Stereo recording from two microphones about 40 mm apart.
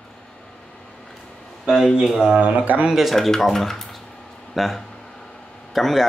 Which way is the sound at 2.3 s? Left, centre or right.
Right.